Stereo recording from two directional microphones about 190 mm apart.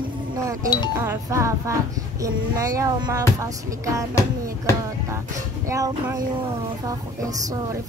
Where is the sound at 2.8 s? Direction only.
20° right (ahead or behind).